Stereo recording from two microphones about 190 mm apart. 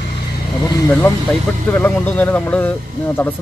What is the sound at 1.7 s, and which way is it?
Speech, 10° left (ahead or behind).